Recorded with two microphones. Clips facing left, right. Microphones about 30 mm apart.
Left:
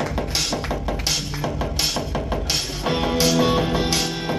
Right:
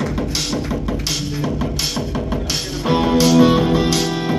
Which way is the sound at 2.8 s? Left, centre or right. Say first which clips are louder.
Right 6 dB; centre.